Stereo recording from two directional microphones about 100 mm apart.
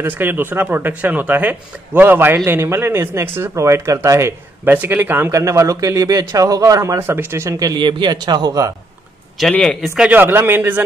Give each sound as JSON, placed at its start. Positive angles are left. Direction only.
{"t": 0.0, "sound": "speech", "side_deg": -20}
{"t": 4.6, "sound": "a man's voice", "side_deg": -20}
{"t": 9.4, "sound": "a man's voice", "side_deg": 5}
{"t": 9.9, "sound": "speech", "side_deg": -15}